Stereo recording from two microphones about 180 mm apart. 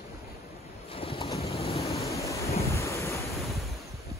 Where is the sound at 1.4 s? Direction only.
35° left (ahead or behind).